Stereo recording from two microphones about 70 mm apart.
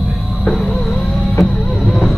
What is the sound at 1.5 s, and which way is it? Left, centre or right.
Music, centre.